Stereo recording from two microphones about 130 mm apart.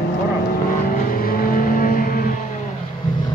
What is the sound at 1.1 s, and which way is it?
Vehicle, 90° left.